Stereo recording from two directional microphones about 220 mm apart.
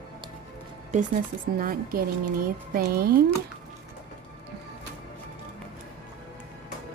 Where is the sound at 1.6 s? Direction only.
40° right (ahead or behind).